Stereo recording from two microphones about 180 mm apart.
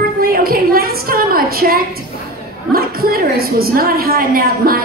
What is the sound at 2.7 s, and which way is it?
A woman's voice, 55° right (ahead or behind).